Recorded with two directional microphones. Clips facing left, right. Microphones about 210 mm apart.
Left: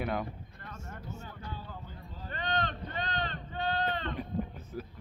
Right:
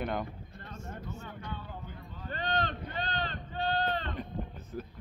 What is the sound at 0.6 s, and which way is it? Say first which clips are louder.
Vehicle: right 2 dB; 25° right (ahead or behind).